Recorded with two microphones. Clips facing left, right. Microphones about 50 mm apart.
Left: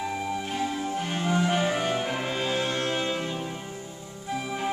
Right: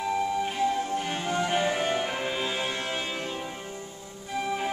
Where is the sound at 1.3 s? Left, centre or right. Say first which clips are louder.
Left 1 dB; centre.